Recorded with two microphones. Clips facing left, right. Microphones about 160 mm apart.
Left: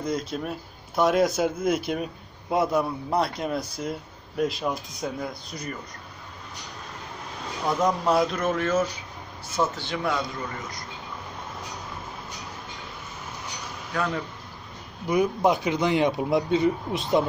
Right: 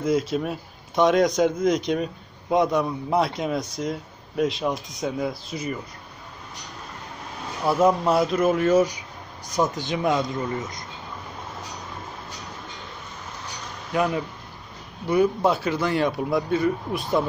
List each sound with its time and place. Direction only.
0.0 s a man's voice: centre (ahead or behind)
7.6 s speech: 5° right (ahead or behind)
13.9 s speech: 15° right (ahead or behind)
15.0 s speech: 15° left (ahead or behind)